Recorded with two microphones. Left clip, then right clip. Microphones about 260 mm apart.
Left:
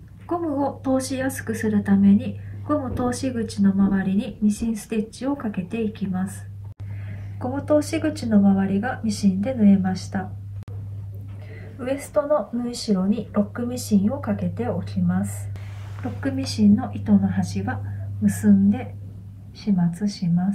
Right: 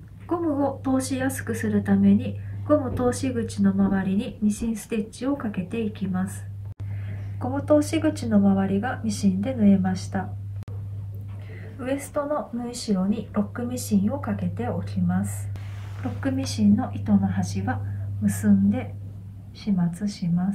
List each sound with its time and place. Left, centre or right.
0.3 s speech: centre
7.3 s speech: centre
11.8 s speech: centre